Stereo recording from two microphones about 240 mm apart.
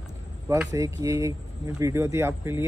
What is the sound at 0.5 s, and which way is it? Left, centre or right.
Speech, centre.